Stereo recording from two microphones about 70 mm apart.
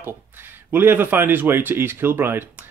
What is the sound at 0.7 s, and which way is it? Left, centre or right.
Speech, right.